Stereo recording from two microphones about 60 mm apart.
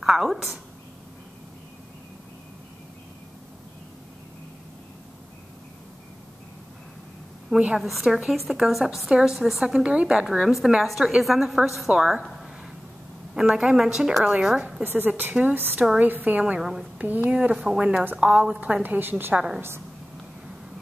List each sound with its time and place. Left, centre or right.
0.0 s a sound: centre
7.5 s a woman's voice: centre
7.8 s a woman's voice: centre
13.3 s a woman's voice: centre
14.8 s a woman's voice: right
16.5 s a woman's voice: centre
17.3 s a woman's voice: centre
18.6 s a woman's voice: right